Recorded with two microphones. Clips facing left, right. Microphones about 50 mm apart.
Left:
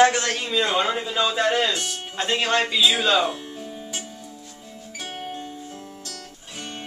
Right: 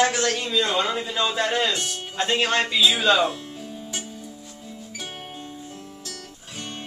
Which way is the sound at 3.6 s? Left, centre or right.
Left.